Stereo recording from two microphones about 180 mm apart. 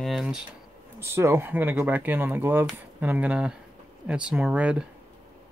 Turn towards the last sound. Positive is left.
turn(degrees=-5)  # may be behind; listen again after turning